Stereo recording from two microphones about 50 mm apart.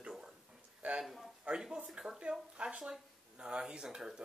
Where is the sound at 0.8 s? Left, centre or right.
Right.